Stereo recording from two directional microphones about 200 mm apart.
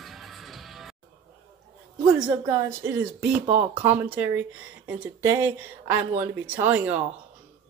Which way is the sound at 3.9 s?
10° right (ahead or behind).